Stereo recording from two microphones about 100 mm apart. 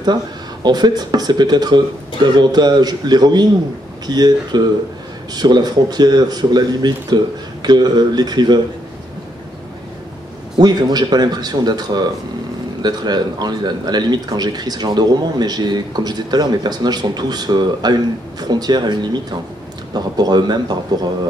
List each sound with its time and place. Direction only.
0.7 s speech: 45° right (ahead or behind)
10.6 s speech: 40° right (ahead or behind)